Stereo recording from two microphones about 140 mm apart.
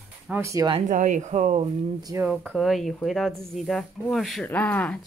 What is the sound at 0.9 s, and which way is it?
Speech, 60° right (ahead or behind).